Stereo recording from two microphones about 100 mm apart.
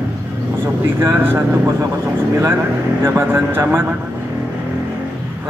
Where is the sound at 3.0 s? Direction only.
25° right (ahead or behind).